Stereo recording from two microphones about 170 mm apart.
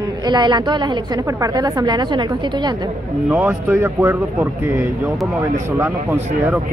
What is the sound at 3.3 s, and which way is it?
Speech, 10° right (ahead or behind).